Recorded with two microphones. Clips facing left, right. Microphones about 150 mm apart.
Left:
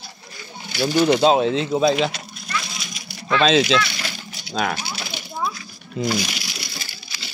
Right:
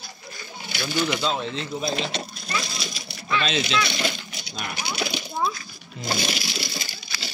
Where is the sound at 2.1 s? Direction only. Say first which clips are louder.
Right 1 dB; 30° right (ahead or behind).